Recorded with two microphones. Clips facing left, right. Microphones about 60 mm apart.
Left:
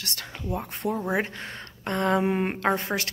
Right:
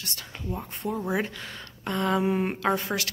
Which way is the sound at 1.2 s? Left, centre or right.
Left.